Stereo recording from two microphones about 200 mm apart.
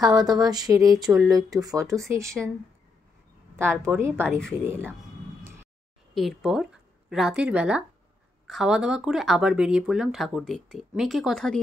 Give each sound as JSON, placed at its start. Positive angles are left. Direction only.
{"t": 0.0, "sound": "speech", "side_deg": -20}
{"t": 3.5, "sound": "speech", "side_deg": -10}
{"t": 4.3, "sound": "speech", "side_deg": 5}
{"t": 6.1, "sound": "speech", "side_deg": 0}